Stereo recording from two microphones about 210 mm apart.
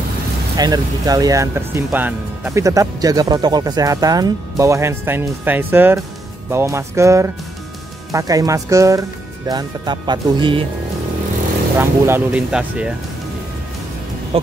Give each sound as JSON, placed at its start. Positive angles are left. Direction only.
{"t": 0.6, "sound": "speech", "side_deg": -20}
{"t": 11.8, "sound": "speech", "side_deg": -10}
{"t": 14.3, "sound": "a sound", "side_deg": -25}